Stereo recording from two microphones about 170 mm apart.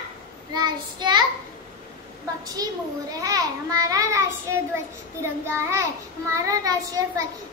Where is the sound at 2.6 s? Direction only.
20° right (ahead or behind).